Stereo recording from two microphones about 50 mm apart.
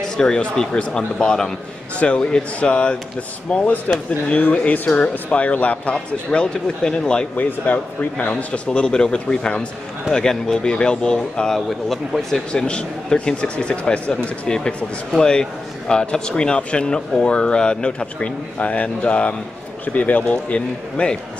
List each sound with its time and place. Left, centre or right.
0.0 s speech: centre
7.3 s speech: left
8.6 s speech: centre
12.6 s speech: centre